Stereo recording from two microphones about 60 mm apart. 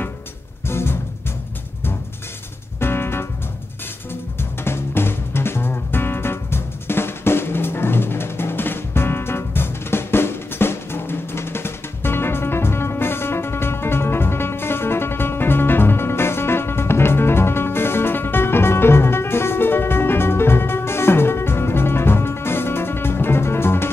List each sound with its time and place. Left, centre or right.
0.7 s music: left
2.8 s music: left